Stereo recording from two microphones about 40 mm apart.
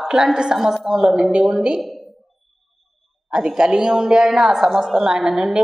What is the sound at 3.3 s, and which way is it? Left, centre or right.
A woman's voice, centre.